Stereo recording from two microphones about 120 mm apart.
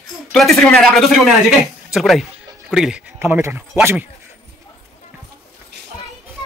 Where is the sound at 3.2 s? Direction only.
15° right (ahead or behind).